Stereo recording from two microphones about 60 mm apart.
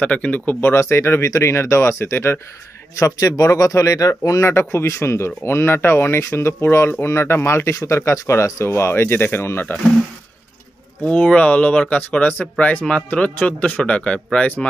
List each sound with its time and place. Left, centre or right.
0.0 s speech: left
0.6 s speech: left
3.0 s speech: left
4.4 s speech: left
4.6 s speech: left
11.1 s speech: centre
12.2 s speech: left